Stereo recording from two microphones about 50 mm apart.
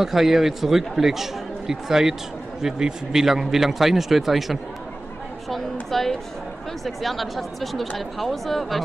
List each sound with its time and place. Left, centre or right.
0.0 s a woman's voice: centre